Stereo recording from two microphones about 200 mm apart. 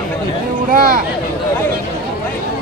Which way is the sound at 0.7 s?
45° right (ahead or behind).